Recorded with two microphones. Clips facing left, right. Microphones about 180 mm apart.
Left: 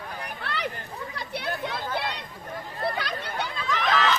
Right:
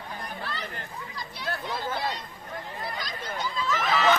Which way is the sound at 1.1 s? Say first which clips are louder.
Left 3 dB; 65° left (ahead or behind).